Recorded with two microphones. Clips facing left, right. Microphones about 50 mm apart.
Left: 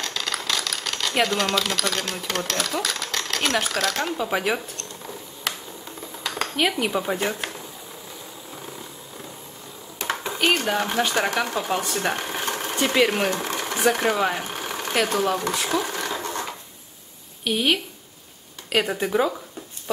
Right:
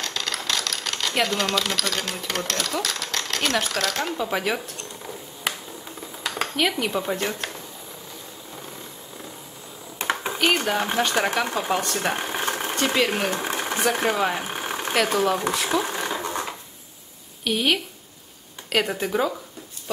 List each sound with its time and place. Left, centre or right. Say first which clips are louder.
0.0 s speech: even; centre
4.7 s a sound: even; centre
6.5 s speech: left 1 dB; centre
9.9 s a sound: right 2 dB; right
10.7 s speech: even; centre
11.8 s speech: even; centre
12.2 s sewing machine: right 1 dB; centre
12.7 s speech: left 3 dB; centre
13.3 s sewing machine: even; centre
13.9 s speech: even; centre
14.5 s a sound: right 1 dB; centre
15.5 s speech: right 1 dB; centre
15.8 s a sound: right 1 dB; centre
17.5 s speech: even; centre